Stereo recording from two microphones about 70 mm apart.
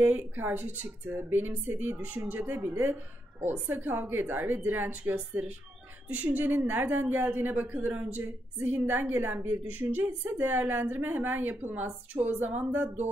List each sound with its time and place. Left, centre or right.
0.0 s a woman's voice: right